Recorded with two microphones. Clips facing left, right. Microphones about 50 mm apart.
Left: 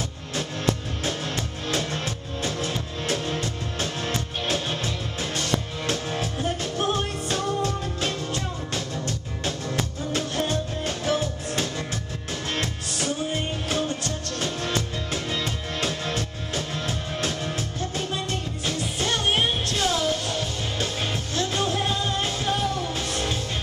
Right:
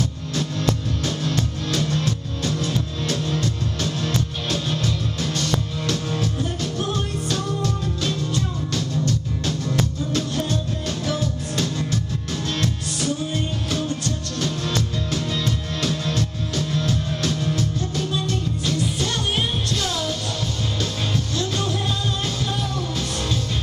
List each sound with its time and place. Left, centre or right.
0.4 s music: left
21.4 s music: left